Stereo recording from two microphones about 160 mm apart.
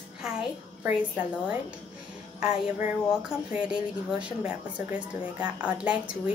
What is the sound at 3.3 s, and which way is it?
A woman's voice, 5° right (ahead or behind).